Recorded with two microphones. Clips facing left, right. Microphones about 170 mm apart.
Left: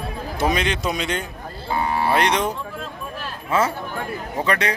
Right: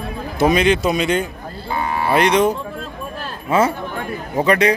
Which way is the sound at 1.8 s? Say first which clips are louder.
Even; 35° left (ahead or behind).